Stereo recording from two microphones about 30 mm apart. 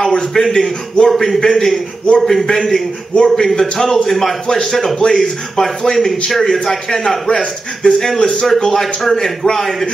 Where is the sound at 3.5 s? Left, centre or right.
Centre.